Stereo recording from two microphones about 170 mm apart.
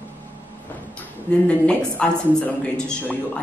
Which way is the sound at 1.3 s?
5° left (ahead or behind).